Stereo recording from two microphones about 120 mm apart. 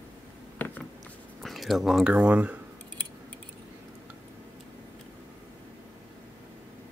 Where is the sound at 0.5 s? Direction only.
15° left (ahead or behind).